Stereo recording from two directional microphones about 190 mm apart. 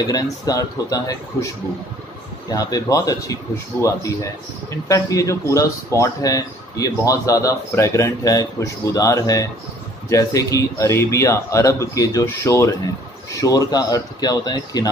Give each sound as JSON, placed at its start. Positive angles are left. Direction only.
{"t": 0.0, "sound": "speech", "side_deg": 20}
{"t": 2.5, "sound": "speech", "side_deg": 20}